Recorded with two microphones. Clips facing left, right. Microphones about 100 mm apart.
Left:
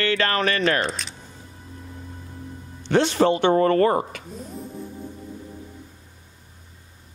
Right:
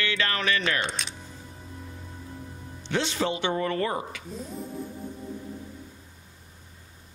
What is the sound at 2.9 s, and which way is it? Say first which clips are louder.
Speech: left 9 dB; 50° left (ahead or behind).